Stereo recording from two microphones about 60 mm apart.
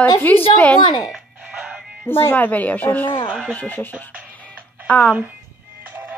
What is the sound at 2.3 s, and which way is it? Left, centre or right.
Speech, left.